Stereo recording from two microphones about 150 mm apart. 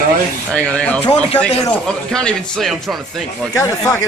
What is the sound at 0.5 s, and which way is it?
Music, 10° left (ahead or behind).